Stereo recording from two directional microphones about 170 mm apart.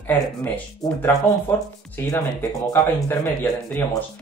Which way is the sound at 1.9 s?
10° left (ahead or behind).